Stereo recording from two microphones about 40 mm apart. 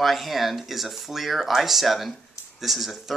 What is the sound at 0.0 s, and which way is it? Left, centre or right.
Speech, centre.